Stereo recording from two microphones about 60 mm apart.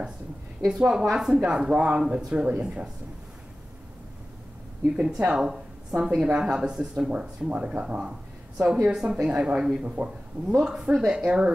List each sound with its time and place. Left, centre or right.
0.7 s a woman's voice: centre
4.9 s a woman's voice: centre